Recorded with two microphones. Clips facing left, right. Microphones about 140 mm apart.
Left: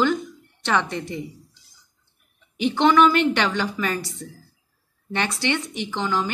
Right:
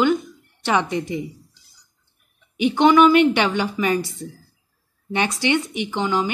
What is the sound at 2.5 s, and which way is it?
A woman's voice, 15° right (ahead or behind).